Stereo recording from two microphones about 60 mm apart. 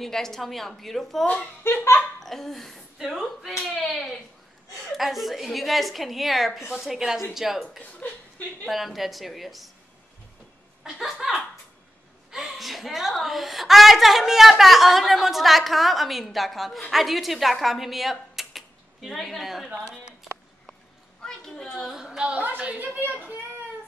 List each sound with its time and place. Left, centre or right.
0.0 s a woman's voice: centre
1.2 s speech: left
2.2 s a woman's voice: centre
8.6 s a woman's voice: centre
12.3 s a woman's voice: centre
21.2 s a woman's voice: centre
21.9 s a woman's voice: centre
22.3 s a woman's voice: right